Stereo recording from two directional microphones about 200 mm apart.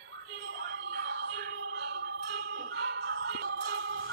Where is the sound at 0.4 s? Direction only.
70° right (ahead or behind); by 1.9 s 90° right.